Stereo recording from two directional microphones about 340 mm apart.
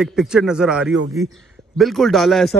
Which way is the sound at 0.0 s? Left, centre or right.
Centre.